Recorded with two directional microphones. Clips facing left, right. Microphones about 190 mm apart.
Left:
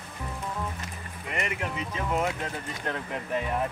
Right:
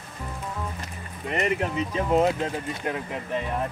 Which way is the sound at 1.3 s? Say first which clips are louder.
Right 7 dB; 35° right (ahead or behind).